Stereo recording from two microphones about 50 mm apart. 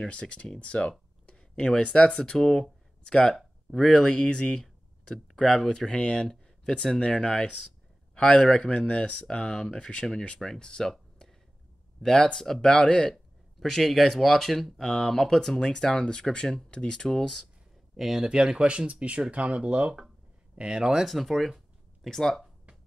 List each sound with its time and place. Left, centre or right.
0.0 s speech: left
2.3 s speech: centre
8.1 s a sound: left
8.4 s speech: centre
17.9 s speech: centre
18.3 s speech: centre
21.0 s speech: centre